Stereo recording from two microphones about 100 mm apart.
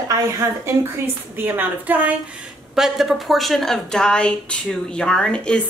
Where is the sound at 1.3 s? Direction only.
20° right (ahead or behind).